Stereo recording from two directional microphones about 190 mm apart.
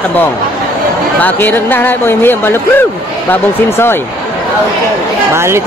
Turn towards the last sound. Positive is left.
turn(degrees=-15)  # may be behind; listen again after turning